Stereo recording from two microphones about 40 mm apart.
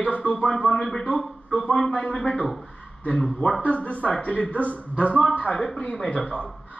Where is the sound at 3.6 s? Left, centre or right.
Left.